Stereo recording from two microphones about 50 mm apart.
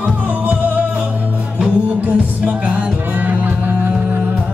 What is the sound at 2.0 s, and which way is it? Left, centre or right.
Music, right.